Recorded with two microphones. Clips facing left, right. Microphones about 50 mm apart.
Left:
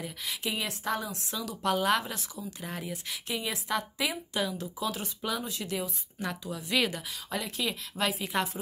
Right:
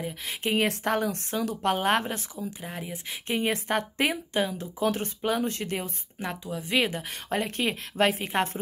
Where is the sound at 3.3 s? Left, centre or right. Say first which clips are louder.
Right 6 dB; right.